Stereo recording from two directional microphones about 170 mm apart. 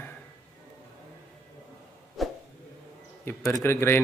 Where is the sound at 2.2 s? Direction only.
Centre (ahead or behind).